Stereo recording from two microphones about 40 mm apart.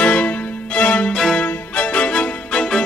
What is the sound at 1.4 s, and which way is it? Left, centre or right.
Music, left.